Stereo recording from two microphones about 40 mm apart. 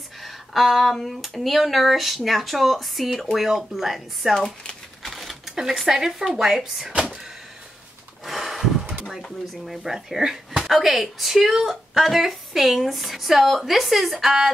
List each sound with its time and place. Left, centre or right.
0.2 s speech: centre
8.3 s a sound: centre
9.5 s speech: centre